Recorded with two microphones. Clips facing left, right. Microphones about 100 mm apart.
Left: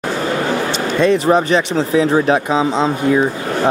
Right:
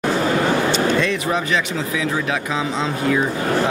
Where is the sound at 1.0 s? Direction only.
35° left (ahead or behind).